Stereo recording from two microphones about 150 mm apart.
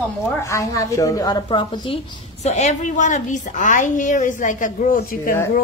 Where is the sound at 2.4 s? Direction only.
50° left (ahead or behind).